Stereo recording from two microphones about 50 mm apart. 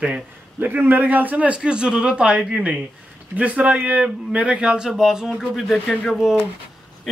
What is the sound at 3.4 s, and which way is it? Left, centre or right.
A man's voice, right.